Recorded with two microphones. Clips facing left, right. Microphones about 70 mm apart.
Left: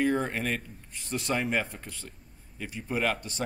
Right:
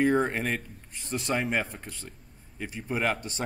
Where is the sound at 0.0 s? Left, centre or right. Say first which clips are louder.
Right 3 dB; centre.